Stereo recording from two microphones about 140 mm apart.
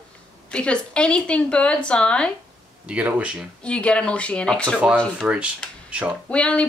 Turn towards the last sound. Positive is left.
turn(degrees=10)  # may be behind; listen again after turning